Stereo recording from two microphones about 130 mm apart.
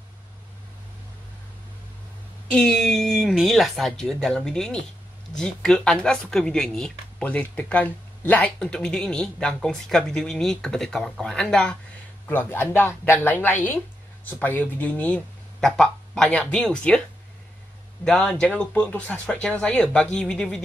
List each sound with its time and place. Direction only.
2.5 s speech: 5° left (ahead or behind)
12.3 s speech: 15° left (ahead or behind)
18.0 s speech: 5° left (ahead or behind)